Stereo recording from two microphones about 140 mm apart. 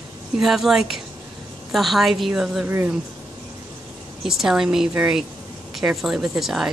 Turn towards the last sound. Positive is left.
turn(degrees=-5)  # may be behind; listen again after turning